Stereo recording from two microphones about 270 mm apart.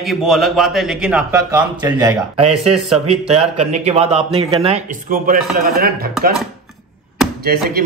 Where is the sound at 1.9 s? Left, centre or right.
Centre.